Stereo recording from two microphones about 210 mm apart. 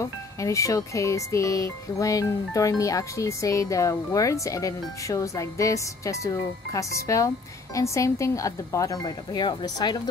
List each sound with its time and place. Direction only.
0.0 s speech: 15° left (ahead or behind)